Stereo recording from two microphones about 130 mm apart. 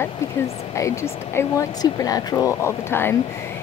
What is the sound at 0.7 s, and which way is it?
Speech, 20° left (ahead or behind).